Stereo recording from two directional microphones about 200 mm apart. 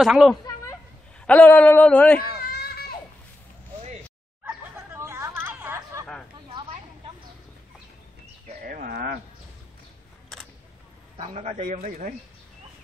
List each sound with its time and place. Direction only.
0.0 s a man's voice: centre (ahead or behind)
2.5 s baby cry: 50° left (ahead or behind)
4.5 s chatter: 15° right (ahead or behind)
8.6 s a sound: 45° right (ahead or behind)
11.1 s a man's voice: 30° right (ahead or behind)